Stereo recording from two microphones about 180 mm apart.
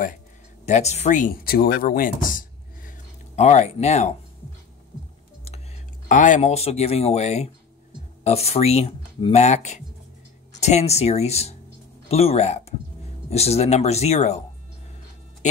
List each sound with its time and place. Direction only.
0.7 s speech: 40° left (ahead or behind)
6.0 s speech: 45° left (ahead or behind)